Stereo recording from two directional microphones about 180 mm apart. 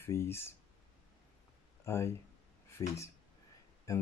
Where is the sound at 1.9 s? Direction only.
15° left (ahead or behind).